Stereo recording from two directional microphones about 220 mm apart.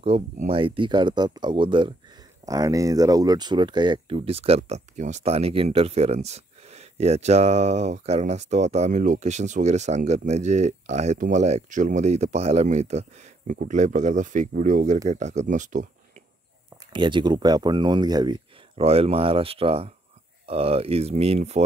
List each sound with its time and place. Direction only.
0.0 s speech: 25° right (ahead or behind)
16.8 s speech: 20° right (ahead or behind)